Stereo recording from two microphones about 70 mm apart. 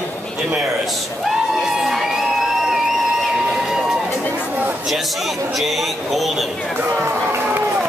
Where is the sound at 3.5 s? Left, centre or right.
Centre.